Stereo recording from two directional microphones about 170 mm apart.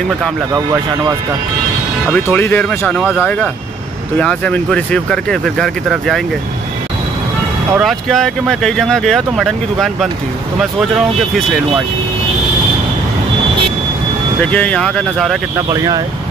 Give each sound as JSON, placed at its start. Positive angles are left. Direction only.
{"t": 2.2, "sound": "speech", "side_deg": 10}
{"t": 3.0, "sound": "speech", "side_deg": -5}
{"t": 4.2, "sound": "speech", "side_deg": 5}
{"t": 7.7, "sound": "speech", "side_deg": 0}
{"t": 14.4, "sound": "speech", "side_deg": 5}
{"t": 15.5, "sound": "speech", "side_deg": -20}